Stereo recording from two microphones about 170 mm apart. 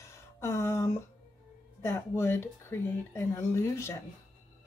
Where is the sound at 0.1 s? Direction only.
15° left (ahead or behind).